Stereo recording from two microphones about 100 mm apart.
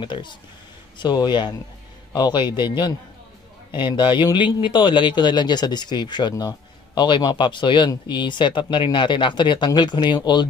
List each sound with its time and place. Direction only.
0.0 s a man's voice: 50° left (ahead or behind)